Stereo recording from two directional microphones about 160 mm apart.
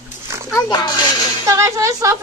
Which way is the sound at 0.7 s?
30° left (ahead or behind).